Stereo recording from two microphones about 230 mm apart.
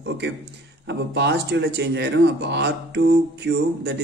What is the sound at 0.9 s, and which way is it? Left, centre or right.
Speech, right.